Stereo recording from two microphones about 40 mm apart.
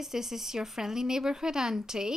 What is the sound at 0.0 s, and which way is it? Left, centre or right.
Speech, centre.